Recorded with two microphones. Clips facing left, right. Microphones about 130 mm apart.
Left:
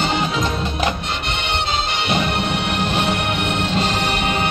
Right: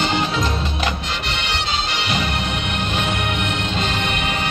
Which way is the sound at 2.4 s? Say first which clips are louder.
Left 3 dB; 65° left (ahead or behind).